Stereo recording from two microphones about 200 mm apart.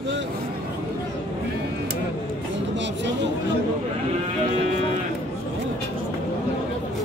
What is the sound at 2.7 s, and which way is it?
Chatter, 60° right (ahead or behind).